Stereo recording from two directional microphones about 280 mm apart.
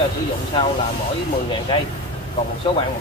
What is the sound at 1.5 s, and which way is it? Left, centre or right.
Speech, centre.